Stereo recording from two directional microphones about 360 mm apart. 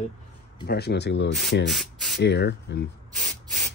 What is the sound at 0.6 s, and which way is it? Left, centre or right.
Speech, left.